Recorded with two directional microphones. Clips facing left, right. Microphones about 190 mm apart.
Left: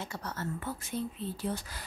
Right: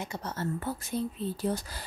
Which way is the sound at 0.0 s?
20° right (ahead or behind).